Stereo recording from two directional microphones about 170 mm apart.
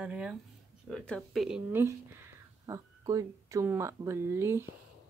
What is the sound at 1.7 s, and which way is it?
Speech, 15° right (ahead or behind).